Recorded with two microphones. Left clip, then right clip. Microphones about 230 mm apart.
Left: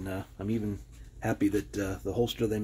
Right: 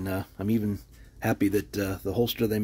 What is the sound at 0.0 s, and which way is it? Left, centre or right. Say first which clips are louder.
Speech: right 5 dB; right.